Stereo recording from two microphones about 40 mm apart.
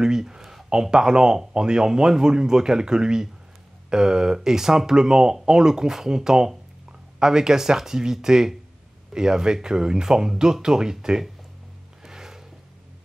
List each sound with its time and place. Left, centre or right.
0.0 s a sound: centre
0.7 s speech: centre
12.0 s music: centre